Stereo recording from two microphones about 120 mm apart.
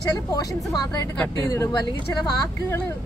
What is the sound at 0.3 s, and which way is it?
A woman's voice, 30° left (ahead or behind).